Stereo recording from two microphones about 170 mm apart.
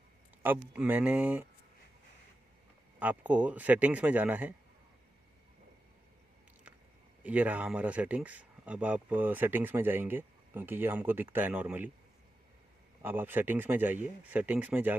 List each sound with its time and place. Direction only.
0.4 s speech: 10° right (ahead or behind)
3.0 s speech: 10° right (ahead or behind)
7.2 s speech: 10° right (ahead or behind)
13.0 s speech: 10° right (ahead or behind)